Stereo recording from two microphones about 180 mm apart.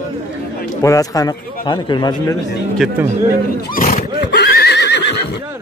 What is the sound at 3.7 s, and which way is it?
Neigh, 50° left (ahead or behind).